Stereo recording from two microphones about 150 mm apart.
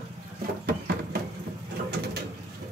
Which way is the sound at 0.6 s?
90° right.